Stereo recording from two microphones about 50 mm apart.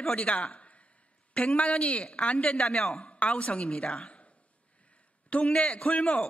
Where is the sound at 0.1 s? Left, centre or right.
Left.